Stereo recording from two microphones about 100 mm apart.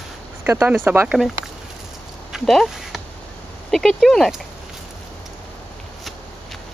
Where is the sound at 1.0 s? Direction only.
Centre (ahead or behind).